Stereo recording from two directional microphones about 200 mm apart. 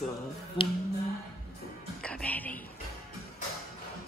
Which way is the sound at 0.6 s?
25° left (ahead or behind).